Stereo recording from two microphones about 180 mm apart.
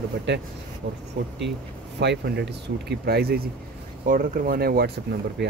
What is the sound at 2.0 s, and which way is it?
Speech, 70° right (ahead or behind).